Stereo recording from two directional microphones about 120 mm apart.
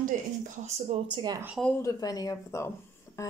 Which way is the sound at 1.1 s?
35° right (ahead or behind).